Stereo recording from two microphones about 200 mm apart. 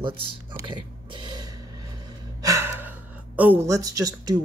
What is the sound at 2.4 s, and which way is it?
Gasp, 15° right (ahead or behind).